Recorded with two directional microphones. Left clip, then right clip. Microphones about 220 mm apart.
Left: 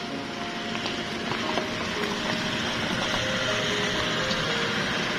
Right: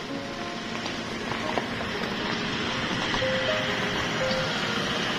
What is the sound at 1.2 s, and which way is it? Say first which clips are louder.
Vehicle: even; 45° left (ahead or behind).